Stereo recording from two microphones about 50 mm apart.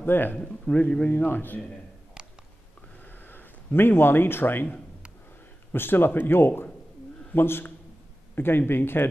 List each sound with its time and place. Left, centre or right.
0.0 s a man's voice: left
3.1 s a sound: left
5.7 s a man's voice: left